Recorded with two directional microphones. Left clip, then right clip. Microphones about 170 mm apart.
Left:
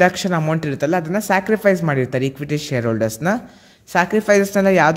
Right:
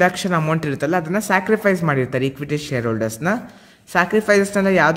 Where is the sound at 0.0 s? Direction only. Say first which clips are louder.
Left 1 dB; 25° left (ahead or behind).